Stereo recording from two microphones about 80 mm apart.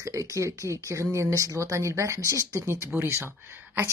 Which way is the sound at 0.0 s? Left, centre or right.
Right.